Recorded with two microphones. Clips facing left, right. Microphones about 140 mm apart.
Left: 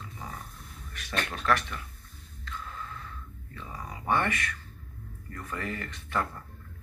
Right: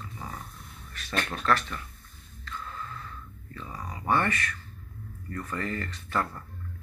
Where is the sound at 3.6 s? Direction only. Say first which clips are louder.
Right 2 dB; 15° left (ahead or behind).